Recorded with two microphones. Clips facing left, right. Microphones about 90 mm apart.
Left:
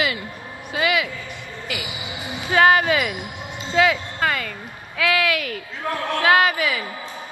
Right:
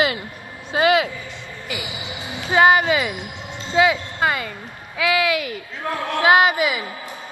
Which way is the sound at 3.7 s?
15° right (ahead or behind).